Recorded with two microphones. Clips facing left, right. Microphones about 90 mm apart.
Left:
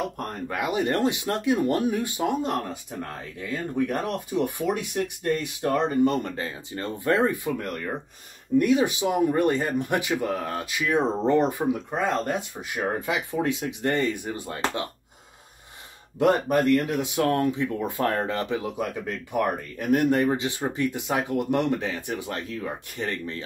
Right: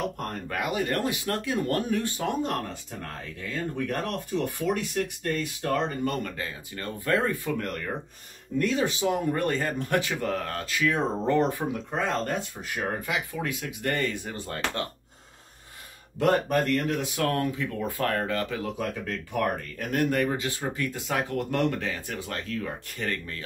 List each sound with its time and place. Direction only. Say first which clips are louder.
0.5 s speech: left 3 dB; 20° left (ahead or behind)
11.7 s speech: left 3 dB; 10° left (ahead or behind)
16.2 s speech: left 2 dB; 10° left (ahead or behind)
17.0 s speech: left 4 dB; 20° left (ahead or behind)
18.8 s speech: left 2 dB; 10° left (ahead or behind)